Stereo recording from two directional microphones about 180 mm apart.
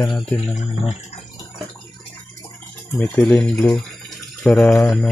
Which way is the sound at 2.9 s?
10° left (ahead or behind).